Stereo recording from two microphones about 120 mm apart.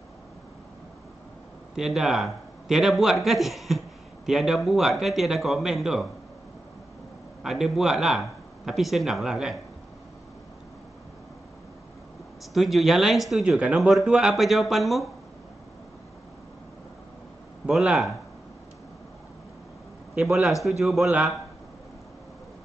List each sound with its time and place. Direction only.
1.8 s speech: 5° right (ahead or behind)
7.4 s speech: 5° right (ahead or behind)
12.5 s speech: centre (ahead or behind)
17.6 s speech: centre (ahead or behind)
20.2 s speech: centre (ahead or behind)